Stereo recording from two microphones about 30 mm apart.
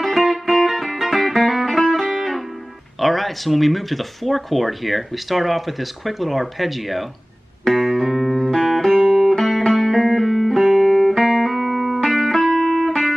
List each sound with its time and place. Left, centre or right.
0.0 s music: centre
3.0 s speech: centre
7.6 s music: centre
9.8 s music: centre
10.8 s music: centre
12.0 s music: centre